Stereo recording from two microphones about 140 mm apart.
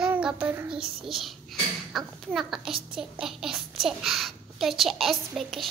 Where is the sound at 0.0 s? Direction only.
5° right (ahead or behind).